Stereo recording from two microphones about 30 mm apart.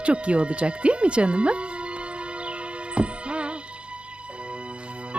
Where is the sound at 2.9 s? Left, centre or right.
Right.